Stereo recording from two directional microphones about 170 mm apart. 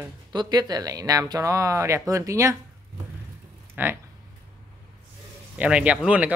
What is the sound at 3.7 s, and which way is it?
Speech, 10° right (ahead or behind).